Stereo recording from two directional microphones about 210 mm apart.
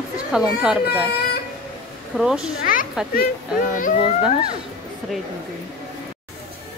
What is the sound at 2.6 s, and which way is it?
Children playing, 40° left (ahead or behind).